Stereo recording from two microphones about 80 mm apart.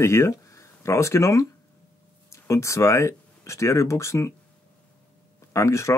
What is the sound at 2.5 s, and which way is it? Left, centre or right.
Speech, left.